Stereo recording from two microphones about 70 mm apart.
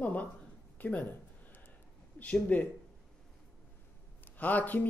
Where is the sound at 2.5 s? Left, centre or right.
Left.